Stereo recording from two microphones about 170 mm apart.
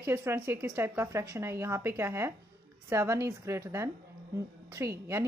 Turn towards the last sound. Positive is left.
turn(degrees=-15)  # may be behind; listen again after turning